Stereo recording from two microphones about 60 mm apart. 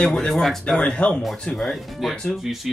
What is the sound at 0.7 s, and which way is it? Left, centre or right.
Speech, centre.